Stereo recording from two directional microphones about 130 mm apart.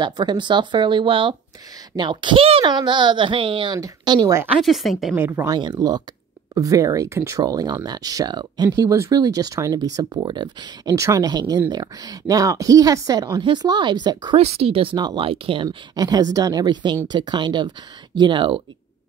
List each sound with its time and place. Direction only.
0.0 s speech: 35° right (ahead or behind)
4.6 s a woman's voice: centre (ahead or behind)
5.1 s speech: 15° right (ahead or behind)
5.5 s speech: 30° right (ahead or behind)
11.0 s speech: 25° right (ahead or behind)
14.4 s speech: 50° right (ahead or behind)
16.0 s speech: 30° right (ahead or behind)